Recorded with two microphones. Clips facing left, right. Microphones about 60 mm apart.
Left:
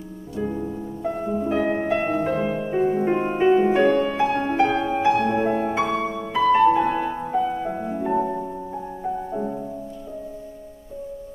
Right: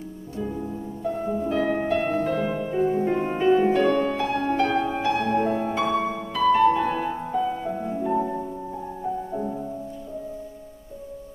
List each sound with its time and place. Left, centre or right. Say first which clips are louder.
0.4 s music: left 3 dB; centre